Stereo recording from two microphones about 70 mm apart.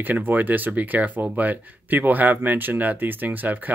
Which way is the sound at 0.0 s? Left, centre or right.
Right.